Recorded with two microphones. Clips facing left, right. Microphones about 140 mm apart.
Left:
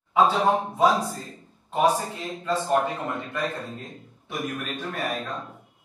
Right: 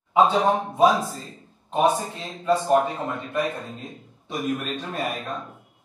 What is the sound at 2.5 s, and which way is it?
A man's voice, 15° right (ahead or behind).